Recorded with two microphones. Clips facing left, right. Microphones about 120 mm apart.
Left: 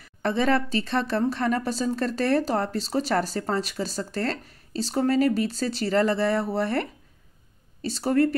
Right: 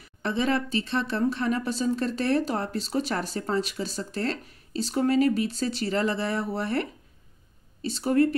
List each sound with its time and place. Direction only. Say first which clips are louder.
0.2 s speech: left 3 dB; 40° left (ahead or behind)